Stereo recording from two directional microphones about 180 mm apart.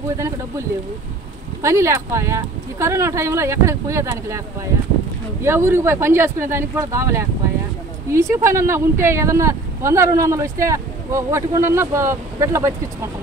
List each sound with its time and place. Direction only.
1.6 s speech: 15° right (ahead or behind)
5.4 s speech: 15° right (ahead or behind)